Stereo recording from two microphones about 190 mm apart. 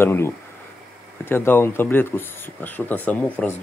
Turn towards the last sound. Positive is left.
turn(degrees=5)  # may be behind; listen again after turning